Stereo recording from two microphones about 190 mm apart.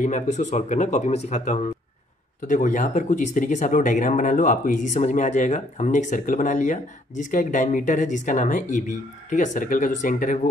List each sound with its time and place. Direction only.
0.0 s speech: 40° left (ahead or behind)